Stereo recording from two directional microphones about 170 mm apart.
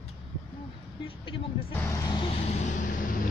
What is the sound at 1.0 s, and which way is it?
Speech, 30° left (ahead or behind).